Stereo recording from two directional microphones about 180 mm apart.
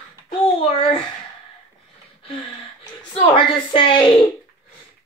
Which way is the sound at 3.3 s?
30° left (ahead or behind).